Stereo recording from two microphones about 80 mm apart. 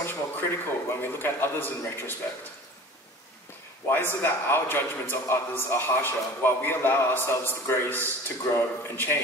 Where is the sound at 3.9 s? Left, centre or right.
Left.